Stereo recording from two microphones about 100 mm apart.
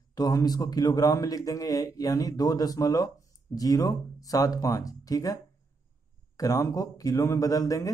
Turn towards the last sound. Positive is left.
turn(degrees=35)  # may be behind; listen again after turning